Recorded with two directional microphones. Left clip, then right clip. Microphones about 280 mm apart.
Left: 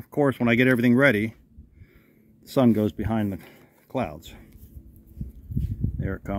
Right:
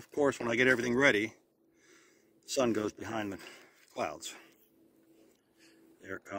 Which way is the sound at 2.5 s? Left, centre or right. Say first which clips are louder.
Left 9 dB; centre.